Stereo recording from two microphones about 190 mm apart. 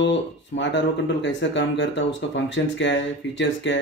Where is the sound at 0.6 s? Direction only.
70° left (ahead or behind).